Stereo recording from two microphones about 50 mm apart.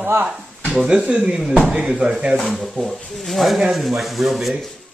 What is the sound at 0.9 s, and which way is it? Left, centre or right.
Speech, right.